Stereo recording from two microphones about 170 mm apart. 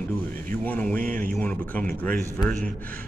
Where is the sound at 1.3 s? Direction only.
10° left (ahead or behind).